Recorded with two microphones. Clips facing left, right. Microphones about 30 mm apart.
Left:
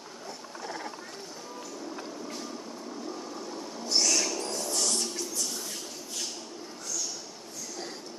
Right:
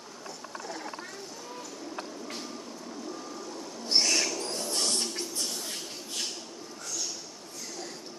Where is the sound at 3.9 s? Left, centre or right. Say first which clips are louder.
Right 1 dB; right.